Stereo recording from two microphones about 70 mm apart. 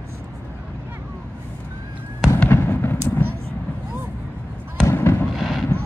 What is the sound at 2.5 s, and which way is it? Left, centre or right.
Fireworks, left.